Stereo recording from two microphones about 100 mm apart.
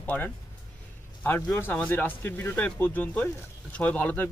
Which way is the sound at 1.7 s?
15° left (ahead or behind).